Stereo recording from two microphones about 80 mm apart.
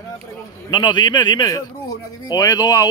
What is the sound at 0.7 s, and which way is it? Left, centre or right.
Speech, left.